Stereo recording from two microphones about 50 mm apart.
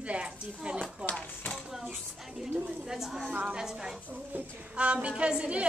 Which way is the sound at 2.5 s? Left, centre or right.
Right.